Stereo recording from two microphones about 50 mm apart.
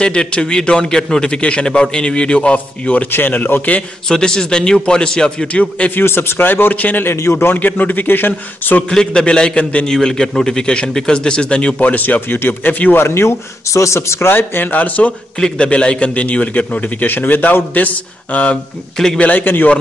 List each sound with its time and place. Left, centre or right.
0.0 s a man's voice: centre
3.1 s speech: left
4.1 s a man's voice: centre
5.9 s speech: left
7.2 s a man's voice: left
7.5 s a man's voice: left
8.8 s a man's voice: centre
11.9 s a man's voice: left
12.4 s speech: left
12.9 s speech: left
14.3 s a man's voice: left
15.3 s a man's voice: centre; by 17.6 s left
18.3 s a man's voice: left
19.4 s speech: left